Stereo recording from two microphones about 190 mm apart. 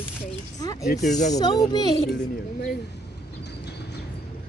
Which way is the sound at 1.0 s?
40° left (ahead or behind).